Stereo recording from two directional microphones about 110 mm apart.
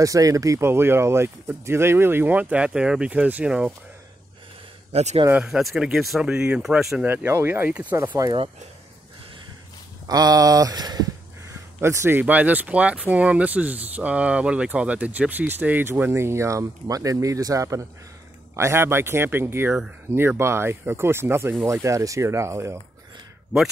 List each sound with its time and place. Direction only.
0.0 s speech: 30° right (ahead or behind); by 3.7 s 10° right (ahead or behind)
4.9 s a man's voice: 75° right (ahead or behind)
5.3 s speech: 5° right (ahead or behind)
7.1 s speech: 20° right (ahead or behind)
10.0 s a sound: 35° right (ahead or behind)
11.8 s speech: 25° right (ahead or behind)